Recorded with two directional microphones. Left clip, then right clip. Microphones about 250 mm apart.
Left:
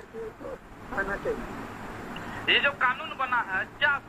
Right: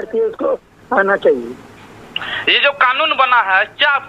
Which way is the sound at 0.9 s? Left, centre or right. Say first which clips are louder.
Right 17 dB; right.